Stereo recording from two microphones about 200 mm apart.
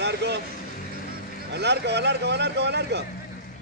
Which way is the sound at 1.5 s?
60° right (ahead or behind).